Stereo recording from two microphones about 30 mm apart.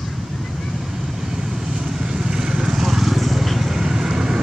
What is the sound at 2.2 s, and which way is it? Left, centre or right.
Vehicle, centre.